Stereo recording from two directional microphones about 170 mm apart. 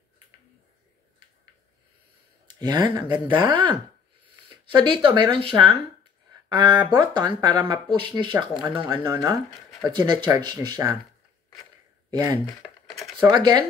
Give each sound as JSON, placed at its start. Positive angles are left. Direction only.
{"t": 2.4, "sound": "speech", "side_deg": -25}
{"t": 8.5, "sound": "speech", "side_deg": -5}
{"t": 9.0, "sound": "speech", "side_deg": -20}
{"t": 12.1, "sound": "speech", "side_deg": -20}